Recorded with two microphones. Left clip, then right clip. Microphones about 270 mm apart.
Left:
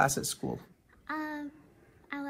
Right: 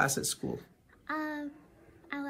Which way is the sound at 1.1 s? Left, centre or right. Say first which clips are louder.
Right 1 dB; centre.